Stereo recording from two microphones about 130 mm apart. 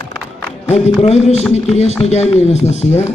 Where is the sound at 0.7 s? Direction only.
55° left (ahead or behind).